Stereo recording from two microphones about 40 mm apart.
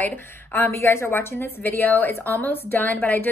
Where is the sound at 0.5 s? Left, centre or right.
Left.